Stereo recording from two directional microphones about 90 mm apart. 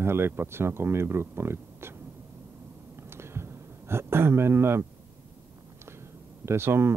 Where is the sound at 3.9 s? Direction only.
25° right (ahead or behind).